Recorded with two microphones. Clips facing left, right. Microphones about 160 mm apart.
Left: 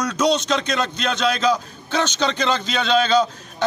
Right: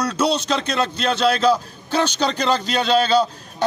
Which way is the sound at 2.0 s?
35° right (ahead or behind).